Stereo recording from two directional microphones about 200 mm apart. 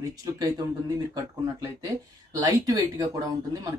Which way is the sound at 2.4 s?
15° right (ahead or behind).